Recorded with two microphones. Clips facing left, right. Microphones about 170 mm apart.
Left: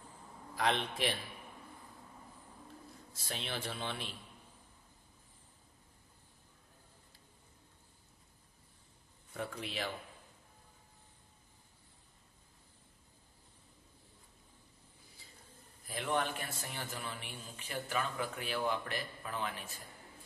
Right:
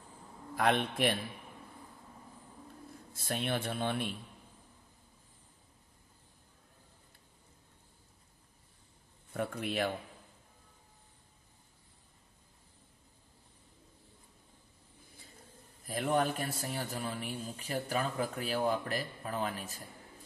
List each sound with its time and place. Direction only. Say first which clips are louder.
0.6 s speech: right 4 dB; 55° right (ahead or behind)
3.1 s speech: right 8 dB; 55° right (ahead or behind)
9.3 s speech: right 6 dB; 55° right (ahead or behind)
15.9 s a man's voice: right 5 dB; 40° right (ahead or behind)